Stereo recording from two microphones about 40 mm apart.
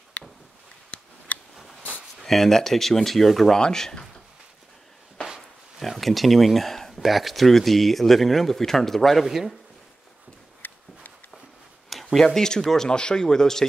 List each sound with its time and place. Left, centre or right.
0.2 s a sound: left
1.3 s scissors: left
2.2 s speech: centre
3.5 s speech: centre
5.8 s speech: centre
9.2 s speech: centre
10.6 s a sound: left
11.9 s a sound: centre
12.4 s speech: centre